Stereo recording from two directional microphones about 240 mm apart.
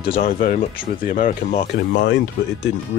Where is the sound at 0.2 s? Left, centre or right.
Left.